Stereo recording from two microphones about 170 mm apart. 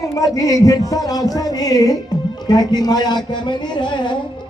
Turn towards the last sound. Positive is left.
turn(degrees=25)  # may be behind; listen again after turning